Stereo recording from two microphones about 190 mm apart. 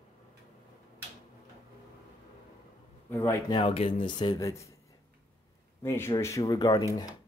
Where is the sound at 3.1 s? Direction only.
15° left (ahead or behind).